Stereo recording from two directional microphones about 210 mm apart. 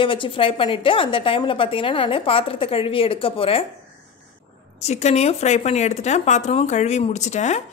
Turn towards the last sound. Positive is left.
turn(degrees=35)  # may be behind; listen again after turning